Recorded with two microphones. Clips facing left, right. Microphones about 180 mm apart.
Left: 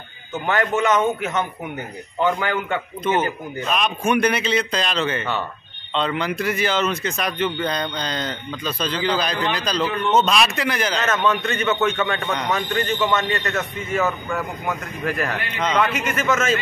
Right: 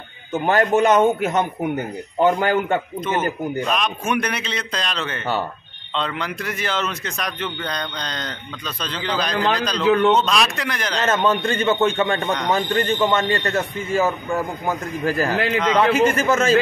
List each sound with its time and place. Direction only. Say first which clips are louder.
0.3 s a man's voice: right 4 dB; 40° right (ahead or behind)
3.1 s a man's voice: left 1 dB; centre (ahead or behind)
11.0 s a man's voice: right 6 dB; 30° right (ahead or behind)